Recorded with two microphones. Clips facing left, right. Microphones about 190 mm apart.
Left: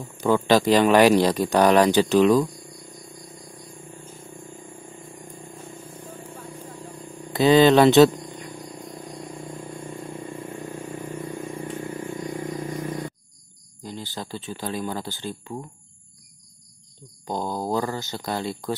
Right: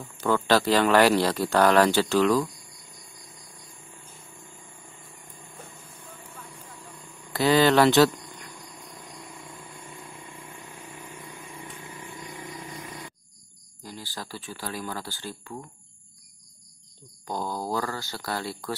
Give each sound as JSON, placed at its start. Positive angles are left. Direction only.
{"t": 0.0, "sound": "speech", "side_deg": 15}
{"t": 6.0, "sound": "a sound", "side_deg": 35}
{"t": 7.2, "sound": "speech", "side_deg": 20}
{"t": 8.1, "sound": "cricket", "side_deg": 35}
{"t": 11.7, "sound": "vehicle", "side_deg": 40}
{"t": 13.8, "sound": "speech", "side_deg": 20}
{"t": 17.3, "sound": "speech", "side_deg": 20}